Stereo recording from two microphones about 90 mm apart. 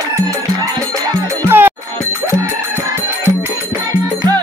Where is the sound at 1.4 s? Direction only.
25° right (ahead or behind).